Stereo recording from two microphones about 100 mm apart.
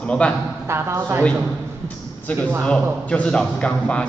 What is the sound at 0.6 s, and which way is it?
Speech, 25° right (ahead or behind).